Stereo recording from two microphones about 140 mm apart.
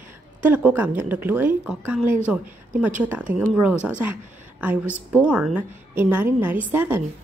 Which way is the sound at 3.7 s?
15° left (ahead or behind).